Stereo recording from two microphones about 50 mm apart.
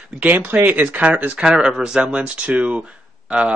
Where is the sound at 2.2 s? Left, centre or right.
Right.